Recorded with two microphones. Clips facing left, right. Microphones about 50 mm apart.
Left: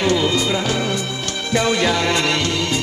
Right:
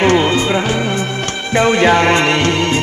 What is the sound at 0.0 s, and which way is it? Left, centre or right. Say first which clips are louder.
Music: right 5 dB; right.